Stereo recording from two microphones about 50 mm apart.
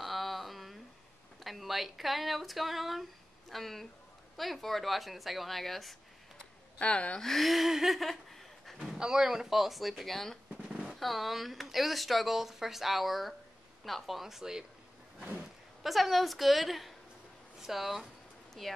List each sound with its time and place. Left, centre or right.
0.0 s a sound: centre
1.4 s speech: centre
6.8 s speech: left
7.2 s speech: centre
8.7 s speech: centre
10.5 s drum: right
11.0 s speech: centre
15.8 s speech: centre